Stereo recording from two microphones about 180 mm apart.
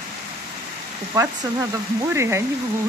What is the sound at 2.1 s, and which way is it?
Speech, 15° right (ahead or behind).